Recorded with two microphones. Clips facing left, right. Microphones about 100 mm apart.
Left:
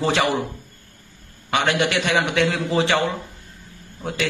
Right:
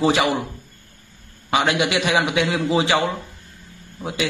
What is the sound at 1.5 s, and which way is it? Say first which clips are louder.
A man's voice: right 1 dB; 5° right (ahead or behind).